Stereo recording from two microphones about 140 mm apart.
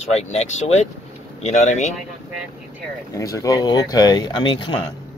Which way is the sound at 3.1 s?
25° left (ahead or behind).